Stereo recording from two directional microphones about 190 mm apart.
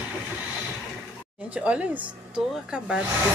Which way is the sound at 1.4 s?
5° right (ahead or behind).